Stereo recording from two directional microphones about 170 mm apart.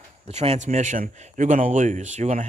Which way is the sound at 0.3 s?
40° right (ahead or behind).